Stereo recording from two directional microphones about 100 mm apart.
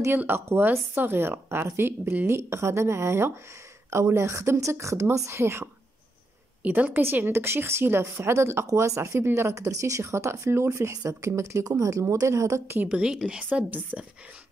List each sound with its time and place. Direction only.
0.2 s speech: 20° right (ahead or behind)
6.6 s speech: 15° right (ahead or behind)
12.8 s a woman's voice: 10° right (ahead or behind)